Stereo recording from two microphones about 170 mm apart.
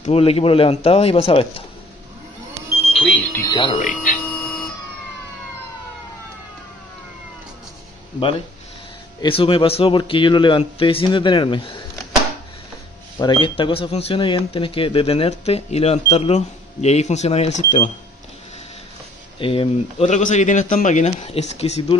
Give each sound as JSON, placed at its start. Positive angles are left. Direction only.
{"t": 0.0, "sound": "speech", "side_deg": 35}
{"t": 2.9, "sound": "smoke detector", "side_deg": 0}
{"t": 3.3, "sound": "speech", "side_deg": 25}
{"t": 3.7, "sound": "speech", "side_deg": 45}
{"t": 9.2, "sound": "speech", "side_deg": 35}
{"t": 13.2, "sound": "speech", "side_deg": 25}
{"t": 19.4, "sound": "speech", "side_deg": 30}